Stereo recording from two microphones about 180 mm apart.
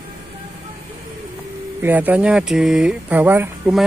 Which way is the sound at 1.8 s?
10° right (ahead or behind).